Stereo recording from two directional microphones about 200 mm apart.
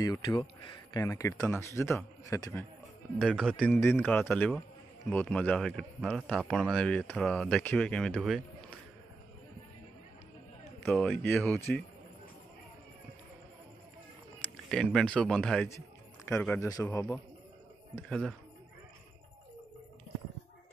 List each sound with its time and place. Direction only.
0.0 s a man's voice: 20° left (ahead or behind)
3.2 s speech: 5° left (ahead or behind)
8.4 s a sound: 5° left (ahead or behind)
10.9 s a man's voice: 5° left (ahead or behind)
14.7 s a man's voice: 5° left (ahead or behind)